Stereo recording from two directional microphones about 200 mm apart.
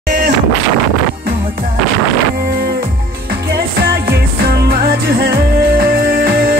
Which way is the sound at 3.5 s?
50° right (ahead or behind).